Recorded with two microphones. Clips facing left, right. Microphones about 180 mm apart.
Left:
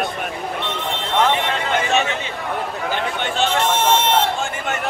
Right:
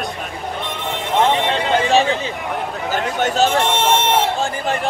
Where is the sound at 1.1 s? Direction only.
25° right (ahead or behind).